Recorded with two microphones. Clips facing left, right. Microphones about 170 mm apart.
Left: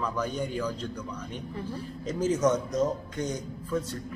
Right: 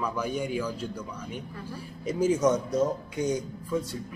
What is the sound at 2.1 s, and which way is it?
A man's voice, 10° right (ahead or behind).